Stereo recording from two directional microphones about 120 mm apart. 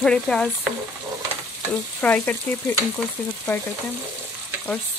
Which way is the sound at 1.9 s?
10° left (ahead or behind).